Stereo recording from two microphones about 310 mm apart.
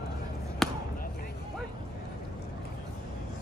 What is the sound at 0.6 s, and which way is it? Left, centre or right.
Basketball bounce, centre.